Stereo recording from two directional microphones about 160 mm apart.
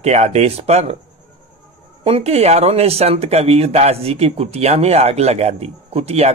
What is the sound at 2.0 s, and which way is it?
Speech, 40° right (ahead or behind).